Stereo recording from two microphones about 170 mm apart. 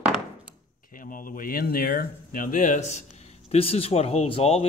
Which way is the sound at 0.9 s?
55° left (ahead or behind).